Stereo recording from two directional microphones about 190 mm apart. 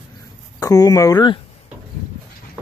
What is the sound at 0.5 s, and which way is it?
Speech, 20° left (ahead or behind).